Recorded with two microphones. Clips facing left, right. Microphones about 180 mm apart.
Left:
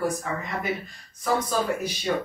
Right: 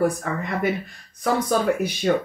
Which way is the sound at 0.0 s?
60° right (ahead or behind).